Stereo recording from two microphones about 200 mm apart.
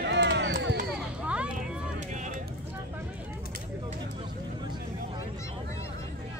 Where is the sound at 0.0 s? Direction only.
60° right (ahead or behind).